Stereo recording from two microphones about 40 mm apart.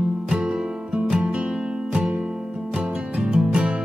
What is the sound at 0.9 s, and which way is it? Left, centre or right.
Music, right.